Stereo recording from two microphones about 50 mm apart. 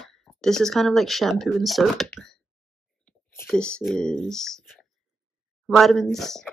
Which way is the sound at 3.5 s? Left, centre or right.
Centre.